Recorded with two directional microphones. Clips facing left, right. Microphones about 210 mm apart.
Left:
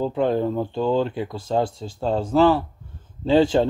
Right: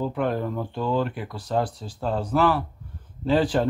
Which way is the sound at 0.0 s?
30° left (ahead or behind).